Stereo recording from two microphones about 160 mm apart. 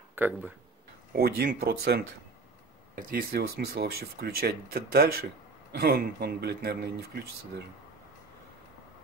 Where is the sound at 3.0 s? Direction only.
75° right (ahead or behind).